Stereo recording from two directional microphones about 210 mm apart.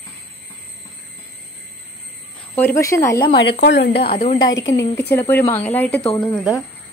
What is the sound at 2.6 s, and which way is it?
Speech, 10° left (ahead or behind).